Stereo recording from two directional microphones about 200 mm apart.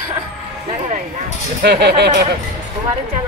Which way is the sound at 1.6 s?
55° right (ahead or behind).